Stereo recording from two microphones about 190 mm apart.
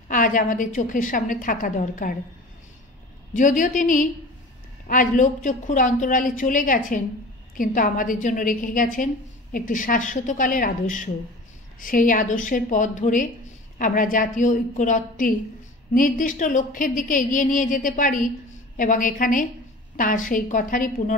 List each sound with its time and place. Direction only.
0.1 s a woman's voice: 45° left (ahead or behind)
3.3 s a woman's voice: 45° left (ahead or behind)